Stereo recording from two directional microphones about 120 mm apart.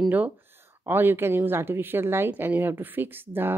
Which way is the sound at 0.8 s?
15° right (ahead or behind).